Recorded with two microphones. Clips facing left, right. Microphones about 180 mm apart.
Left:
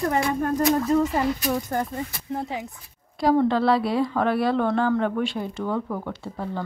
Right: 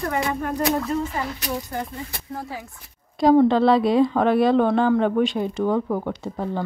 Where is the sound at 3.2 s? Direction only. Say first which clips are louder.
Right 4 dB; 20° right (ahead or behind).